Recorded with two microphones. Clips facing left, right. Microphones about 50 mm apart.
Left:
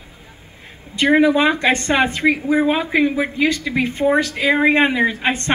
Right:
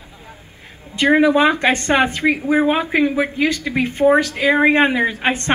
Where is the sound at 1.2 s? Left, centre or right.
Right.